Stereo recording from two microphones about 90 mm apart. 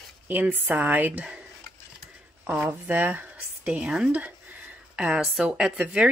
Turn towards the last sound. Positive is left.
turn(degrees=-10)  # may be behind; listen again after turning